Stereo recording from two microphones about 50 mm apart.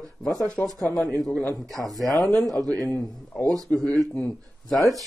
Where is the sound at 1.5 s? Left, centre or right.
Centre.